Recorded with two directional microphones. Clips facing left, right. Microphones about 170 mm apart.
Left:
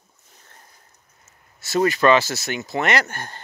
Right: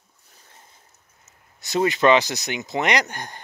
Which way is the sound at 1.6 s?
20° right (ahead or behind).